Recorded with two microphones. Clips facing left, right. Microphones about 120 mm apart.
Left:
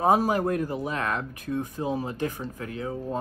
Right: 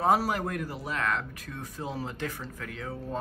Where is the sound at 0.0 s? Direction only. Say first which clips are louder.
Left 4 dB; 20° left (ahead or behind).